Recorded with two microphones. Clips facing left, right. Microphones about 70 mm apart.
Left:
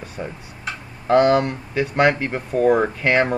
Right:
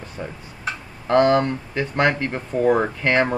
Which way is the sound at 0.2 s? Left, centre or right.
Centre.